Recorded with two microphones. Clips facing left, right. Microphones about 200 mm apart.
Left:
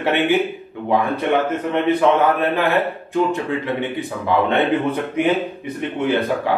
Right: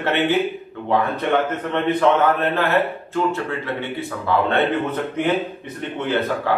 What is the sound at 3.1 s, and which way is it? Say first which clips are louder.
A man's voice: left 3 dB; 15° left (ahead or behind).